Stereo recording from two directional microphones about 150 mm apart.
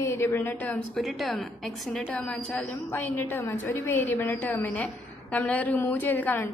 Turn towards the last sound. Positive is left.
turn(degrees=15)  # may be behind; listen again after turning